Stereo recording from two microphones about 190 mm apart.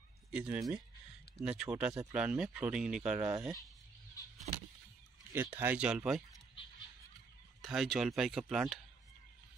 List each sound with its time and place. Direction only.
0.3 s speech: 5° right (ahead or behind)
3.2 s speech: 20° right (ahead or behind)
4.5 s a sound: 35° right (ahead or behind)
5.3 s speech: 10° right (ahead or behind)
7.6 s speech: centre (ahead or behind)